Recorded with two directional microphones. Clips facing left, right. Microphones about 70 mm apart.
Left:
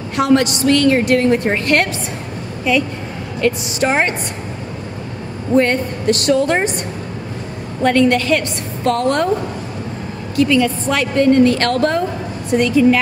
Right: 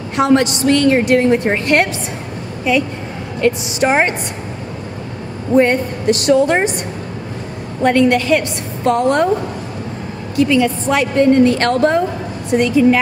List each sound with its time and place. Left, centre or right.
0.1 s a woman's voice: right
5.5 s a woman's voice: centre
7.8 s a woman's voice: centre
10.3 s a woman's voice: centre